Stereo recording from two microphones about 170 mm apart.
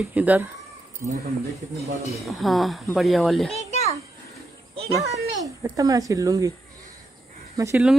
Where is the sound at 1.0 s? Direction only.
50° right (ahead or behind).